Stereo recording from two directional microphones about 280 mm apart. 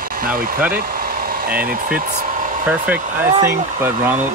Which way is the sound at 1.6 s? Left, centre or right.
Right.